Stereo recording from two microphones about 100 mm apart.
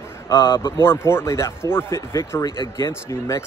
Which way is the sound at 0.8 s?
25° left (ahead or behind).